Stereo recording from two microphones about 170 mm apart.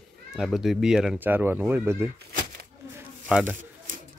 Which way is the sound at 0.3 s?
Centre (ahead or behind).